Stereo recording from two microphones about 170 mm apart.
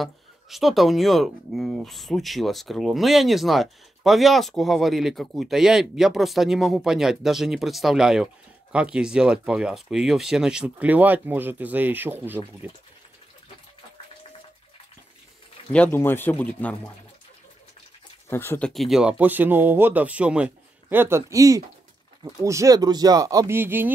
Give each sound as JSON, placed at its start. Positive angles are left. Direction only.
{"t": 0.0, "sound": "speech", "side_deg": 0}
{"t": 15.7, "sound": "speech", "side_deg": 10}
{"t": 18.3, "sound": "speech", "side_deg": 15}
{"t": 18.7, "sound": "speech", "side_deg": 0}